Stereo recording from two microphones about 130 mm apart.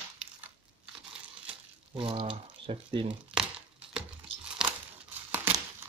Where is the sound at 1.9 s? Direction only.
40° right (ahead or behind).